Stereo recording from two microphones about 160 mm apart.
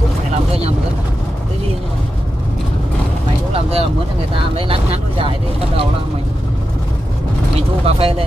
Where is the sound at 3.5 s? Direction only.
35° right (ahead or behind).